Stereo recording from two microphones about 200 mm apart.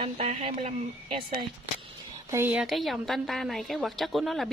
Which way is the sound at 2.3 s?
10° right (ahead or behind).